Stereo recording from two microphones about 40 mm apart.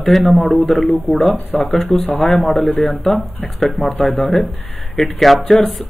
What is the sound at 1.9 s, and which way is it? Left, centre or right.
Speech, left.